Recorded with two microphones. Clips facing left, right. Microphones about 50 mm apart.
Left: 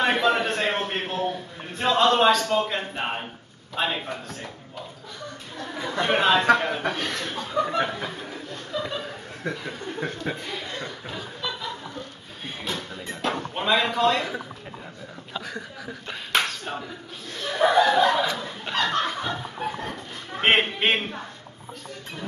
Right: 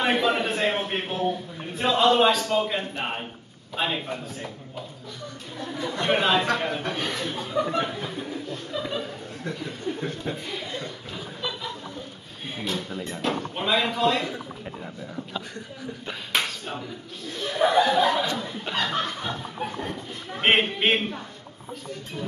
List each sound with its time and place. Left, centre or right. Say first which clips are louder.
0.0 s a man's voice: left 1 dB; centre
5.9 s speech: left 2 dB; centre
8.5 s chuckle: even; centre
9.9 s chuckle: left 1 dB; centre
10.3 s chuckle: even; centre
11.1 s a sound: even; centre
12.6 s music: right 2 dB; centre
13.1 s a sound: left 1 dB; centre
16.1 s speech: left 2 dB; centre
19.0 s snicker: left 3 dB; centre
20.3 s speech: left 1 dB; centre